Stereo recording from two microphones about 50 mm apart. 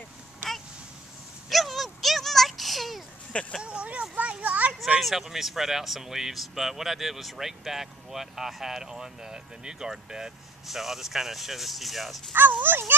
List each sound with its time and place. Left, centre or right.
1.5 s a sound: centre
3.6 s speech: right
5.0 s speech: centre
12.3 s speech: right